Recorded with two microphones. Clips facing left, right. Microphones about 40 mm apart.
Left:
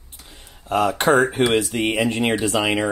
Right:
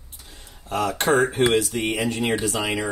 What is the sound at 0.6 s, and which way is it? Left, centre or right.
Speech, left.